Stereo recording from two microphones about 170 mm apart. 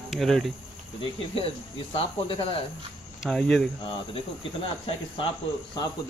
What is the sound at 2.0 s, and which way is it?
Speech, 30° left (ahead or behind).